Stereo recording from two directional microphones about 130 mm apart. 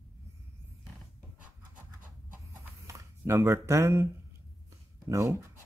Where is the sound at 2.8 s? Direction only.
20° right (ahead or behind).